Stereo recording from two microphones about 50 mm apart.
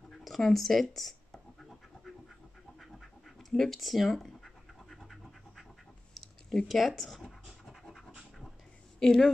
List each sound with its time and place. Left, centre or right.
0.2 s speech: centre
1.7 s pant: centre
2.8 s scratch: centre
9.0 s a woman's voice: centre